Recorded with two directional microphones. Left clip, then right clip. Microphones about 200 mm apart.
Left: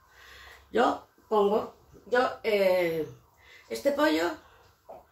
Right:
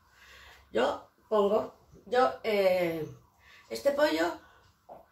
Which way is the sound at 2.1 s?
5° left (ahead or behind).